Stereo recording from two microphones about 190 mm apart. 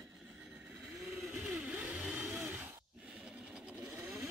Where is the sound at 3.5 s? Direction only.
5° right (ahead or behind).